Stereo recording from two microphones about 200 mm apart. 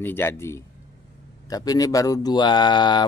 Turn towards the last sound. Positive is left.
turn(degrees=20)  # may be behind; listen again after turning